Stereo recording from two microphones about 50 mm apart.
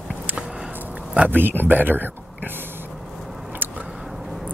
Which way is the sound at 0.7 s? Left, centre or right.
Right.